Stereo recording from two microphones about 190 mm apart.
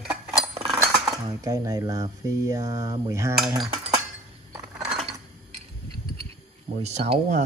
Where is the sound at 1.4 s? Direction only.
15° right (ahead or behind).